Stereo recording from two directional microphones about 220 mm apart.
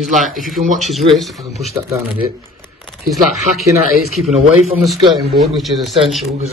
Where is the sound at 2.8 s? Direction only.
Centre (ahead or behind).